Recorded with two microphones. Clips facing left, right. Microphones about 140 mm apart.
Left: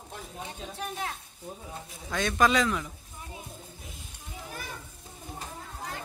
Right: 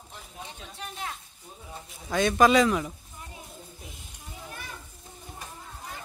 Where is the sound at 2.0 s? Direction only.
10° right (ahead or behind).